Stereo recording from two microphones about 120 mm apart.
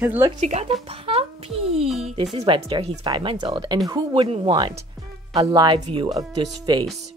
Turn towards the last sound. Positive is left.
turn(degrees=-35)  # may be behind; listen again after turning